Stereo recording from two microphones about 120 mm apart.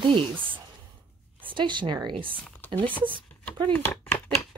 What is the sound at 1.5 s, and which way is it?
Speech, 40° right (ahead or behind).